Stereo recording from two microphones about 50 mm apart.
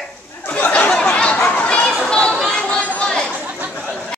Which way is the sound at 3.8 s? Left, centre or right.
Centre.